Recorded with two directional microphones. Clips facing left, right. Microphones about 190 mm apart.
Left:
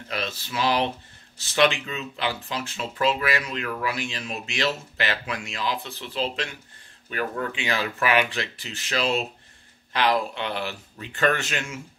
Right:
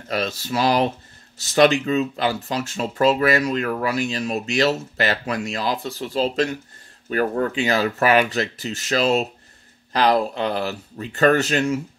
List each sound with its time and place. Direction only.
0.1 s speech: 40° right (ahead or behind)